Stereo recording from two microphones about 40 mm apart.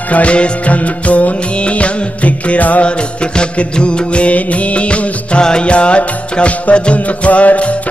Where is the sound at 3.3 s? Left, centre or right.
Left.